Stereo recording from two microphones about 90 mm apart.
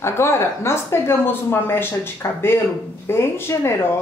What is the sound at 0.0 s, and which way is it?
Speech, 30° left (ahead or behind).